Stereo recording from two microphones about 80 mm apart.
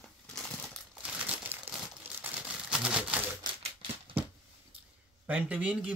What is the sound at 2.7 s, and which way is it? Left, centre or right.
Typewriter, centre.